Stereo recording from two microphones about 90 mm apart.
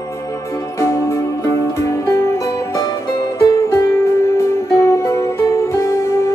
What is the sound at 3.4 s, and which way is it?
Music, 35° left (ahead or behind).